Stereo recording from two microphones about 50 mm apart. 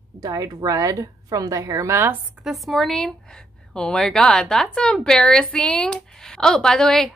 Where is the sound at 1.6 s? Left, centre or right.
Right.